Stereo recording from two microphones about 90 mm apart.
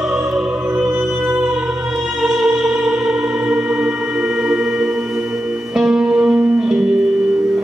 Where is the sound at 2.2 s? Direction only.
5° right (ahead or behind).